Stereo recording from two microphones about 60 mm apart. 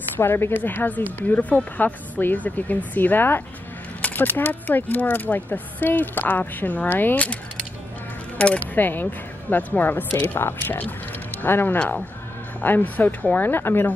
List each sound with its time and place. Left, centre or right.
0.2 s speech: left
8.5 s speech: left